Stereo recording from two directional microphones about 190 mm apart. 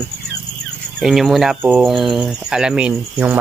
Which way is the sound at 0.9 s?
Centre (ahead or behind).